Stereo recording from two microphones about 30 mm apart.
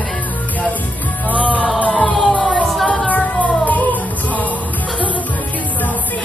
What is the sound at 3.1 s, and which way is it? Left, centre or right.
Music, left.